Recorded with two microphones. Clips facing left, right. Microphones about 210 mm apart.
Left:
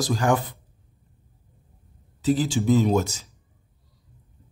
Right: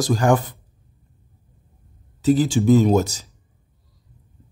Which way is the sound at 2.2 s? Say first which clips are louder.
Right 5 dB; 45° right (ahead or behind).